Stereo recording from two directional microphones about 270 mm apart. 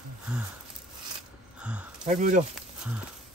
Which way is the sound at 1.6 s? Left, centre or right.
Centre.